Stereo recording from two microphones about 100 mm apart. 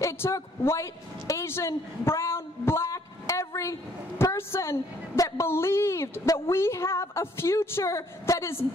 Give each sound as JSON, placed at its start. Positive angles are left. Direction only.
{"t": 0.0, "sound": "a man's voice", "side_deg": 30}